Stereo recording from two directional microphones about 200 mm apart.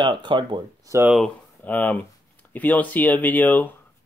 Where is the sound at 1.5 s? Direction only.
10° left (ahead or behind).